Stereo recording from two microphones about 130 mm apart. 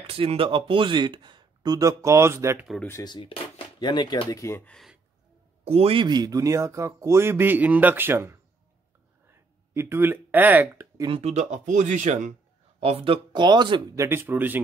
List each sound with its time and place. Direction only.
0.0 s speech: 45° right (ahead or behind); by 2.6 s 20° right (ahead or behind)
3.0 s speech: 35° left (ahead or behind)
4.6 s speech: 5° left (ahead or behind)
5.7 s speech: 50° right (ahead or behind); by 10.9 s 15° right (ahead or behind)
11.1 s speech: 55° right (ahead or behind); by 12.4 s 70° right (ahead or behind)
12.8 s speech: 45° right (ahead or behind)
13.9 s speech: 20° right (ahead or behind)